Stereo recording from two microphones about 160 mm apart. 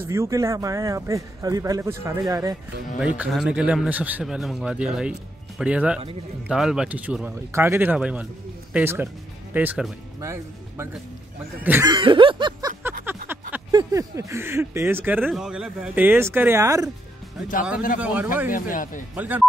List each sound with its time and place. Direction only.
0.0 s a man's voice: 15° right (ahead or behind)
3.0 s a man's voice: 5° right (ahead or behind)
11.8 s a man's voice: 30° right (ahead or behind)
13.3 s a sound: 15° right (ahead or behind)
13.7 s speech: 20° right (ahead or behind)
15.2 s speech: centre (ahead or behind); by 16.8 s 20° right (ahead or behind)
17.9 s speech: 10° right (ahead or behind)
18.5 s speech: 55° left (ahead or behind)
19.1 s speech: 10° right (ahead or behind)